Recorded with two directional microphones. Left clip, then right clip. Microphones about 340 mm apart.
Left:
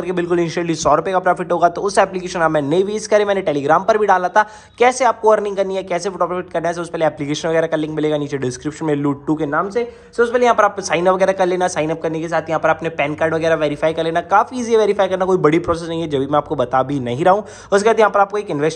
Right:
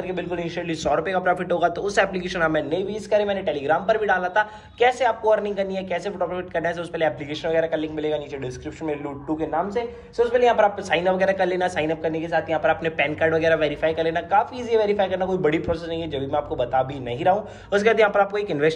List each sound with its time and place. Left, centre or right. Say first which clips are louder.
0.1 s a man's voice: left 13 dB; left